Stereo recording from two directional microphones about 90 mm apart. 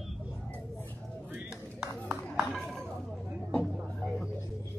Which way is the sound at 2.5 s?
5° left (ahead or behind).